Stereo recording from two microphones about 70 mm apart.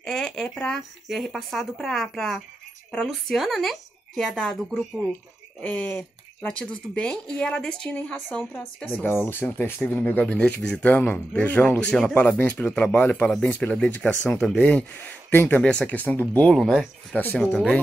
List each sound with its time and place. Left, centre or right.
0.0 s a woman's voice: centre
5.6 s speech: left
6.4 s speech: centre
10.3 s speech: centre
16.5 s speech: centre